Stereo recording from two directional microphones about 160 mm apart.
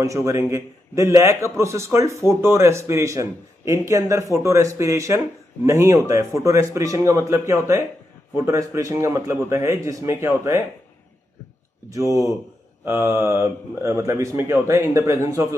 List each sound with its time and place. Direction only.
0.0 s a man's voice: 20° right (ahead or behind)
12.1 s a man's voice: 20° right (ahead or behind)